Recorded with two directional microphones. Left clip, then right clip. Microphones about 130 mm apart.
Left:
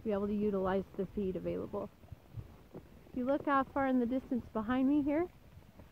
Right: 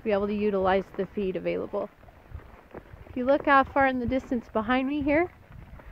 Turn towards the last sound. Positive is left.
turn(degrees=-50)  # may be behind; listen again after turning